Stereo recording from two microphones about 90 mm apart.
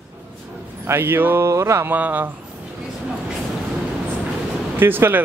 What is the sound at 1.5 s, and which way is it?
Mantra, 35° right (ahead or behind).